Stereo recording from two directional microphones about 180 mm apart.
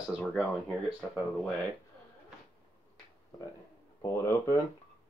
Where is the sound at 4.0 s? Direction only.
15° left (ahead or behind).